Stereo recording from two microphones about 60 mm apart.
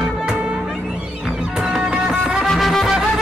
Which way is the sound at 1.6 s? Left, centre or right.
Centre.